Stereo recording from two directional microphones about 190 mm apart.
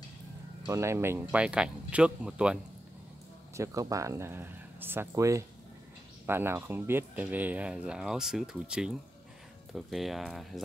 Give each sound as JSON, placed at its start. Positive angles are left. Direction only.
{"t": 0.7, "sound": "speech", "side_deg": -15}
{"t": 3.5, "sound": "speech", "side_deg": -15}